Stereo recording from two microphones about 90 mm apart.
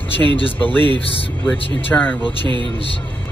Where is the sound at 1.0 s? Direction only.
90° left.